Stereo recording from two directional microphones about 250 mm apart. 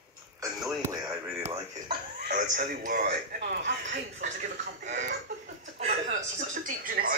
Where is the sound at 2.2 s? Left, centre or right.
Right.